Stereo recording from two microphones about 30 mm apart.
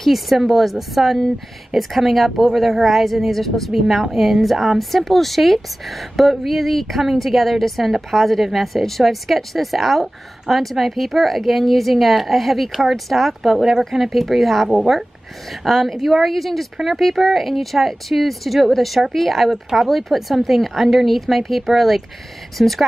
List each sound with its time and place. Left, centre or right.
0.1 s speech: centre
4.1 s a woman's voice: centre
13.4 s speech: centre
14.7 s speech: centre